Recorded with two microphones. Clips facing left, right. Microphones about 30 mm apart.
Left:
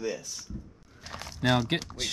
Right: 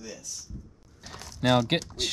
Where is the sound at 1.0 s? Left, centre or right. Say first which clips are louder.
Left 3 dB; left.